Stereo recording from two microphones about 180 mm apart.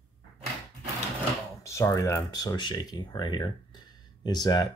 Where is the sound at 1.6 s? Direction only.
15° left (ahead or behind).